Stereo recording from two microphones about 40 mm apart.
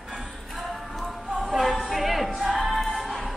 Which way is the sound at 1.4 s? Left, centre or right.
Centre.